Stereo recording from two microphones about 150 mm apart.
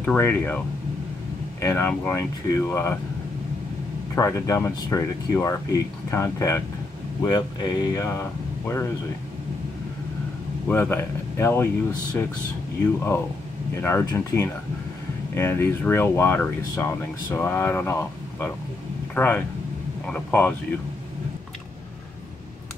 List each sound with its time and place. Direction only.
0.0 s speech: 10° left (ahead or behind)
1.6 s speech: 15° left (ahead or behind)
4.1 s speech: 20° left (ahead or behind)
7.2 s speech: 30° left (ahead or behind)
10.7 s speech: 15° left (ahead or behind)
13.7 s speech: 15° left (ahead or behind)